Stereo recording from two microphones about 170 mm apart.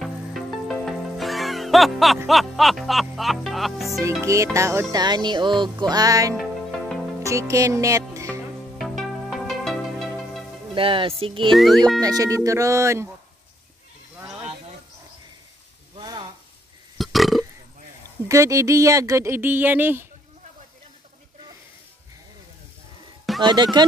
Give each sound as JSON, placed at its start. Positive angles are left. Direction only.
{"t": 0.0, "sound": "music", "side_deg": 0}
{"t": 4.0, "sound": "speech", "side_deg": -15}
{"t": 4.9, "sound": "music", "side_deg": -25}
{"t": 7.2, "sound": "speech", "side_deg": -15}
{"t": 8.7, "sound": "music", "side_deg": 0}
{"t": 10.7, "sound": "music", "side_deg": -30}
{"t": 11.5, "sound": "music", "side_deg": 0}
{"t": 12.0, "sound": "music", "side_deg": -20}
{"t": 16.0, "sound": "sizzle", "side_deg": -25}
{"t": 17.0, "sound": "burping", "side_deg": 0}
{"t": 18.3, "sound": "speech", "side_deg": -20}
{"t": 23.4, "sound": "music", "side_deg": -25}